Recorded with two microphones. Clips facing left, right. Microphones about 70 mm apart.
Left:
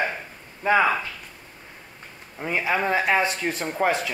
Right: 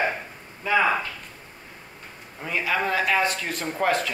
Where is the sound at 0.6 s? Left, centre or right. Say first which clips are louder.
Left 3 dB; left.